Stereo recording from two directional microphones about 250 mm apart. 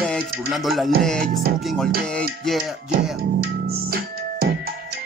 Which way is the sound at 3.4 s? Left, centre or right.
Right.